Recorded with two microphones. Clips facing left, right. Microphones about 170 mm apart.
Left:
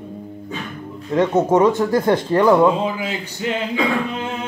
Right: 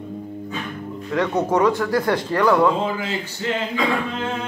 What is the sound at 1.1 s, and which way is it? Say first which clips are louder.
Speech: left 4 dB; 20° left (ahead or behind).